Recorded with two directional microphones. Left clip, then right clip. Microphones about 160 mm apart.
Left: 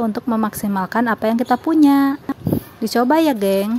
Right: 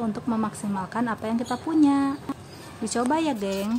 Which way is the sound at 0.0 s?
40° left (ahead or behind).